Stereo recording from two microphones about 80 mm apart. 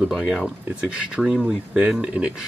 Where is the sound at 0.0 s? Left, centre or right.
Centre.